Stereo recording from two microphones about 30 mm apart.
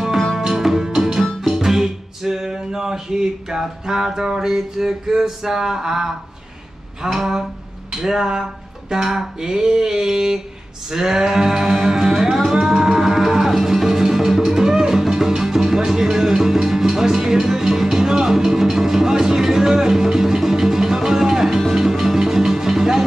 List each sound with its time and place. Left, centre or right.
0.5 s music: centre
7.9 s music: centre